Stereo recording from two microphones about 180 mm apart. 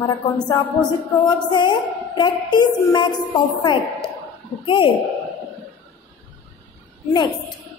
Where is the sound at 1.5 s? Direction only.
25° left (ahead or behind).